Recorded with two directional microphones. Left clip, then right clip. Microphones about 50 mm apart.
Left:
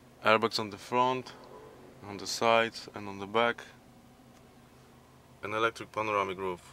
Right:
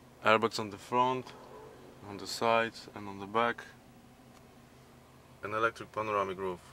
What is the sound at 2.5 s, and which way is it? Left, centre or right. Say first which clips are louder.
Speech: left 3 dB; left.